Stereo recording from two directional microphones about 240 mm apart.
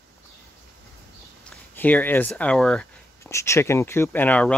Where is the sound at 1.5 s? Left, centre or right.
Centre.